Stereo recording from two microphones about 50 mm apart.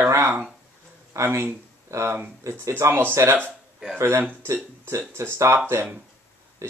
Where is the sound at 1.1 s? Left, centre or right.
Right.